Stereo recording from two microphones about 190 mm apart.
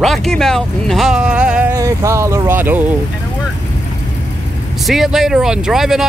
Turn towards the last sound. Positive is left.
turn(degrees=0)  # may be behind; listen again after turning